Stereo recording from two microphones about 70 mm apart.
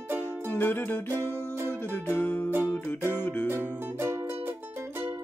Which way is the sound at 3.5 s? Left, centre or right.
Right.